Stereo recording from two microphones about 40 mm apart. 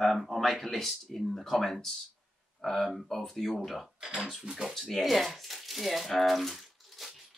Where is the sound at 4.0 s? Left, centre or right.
Centre.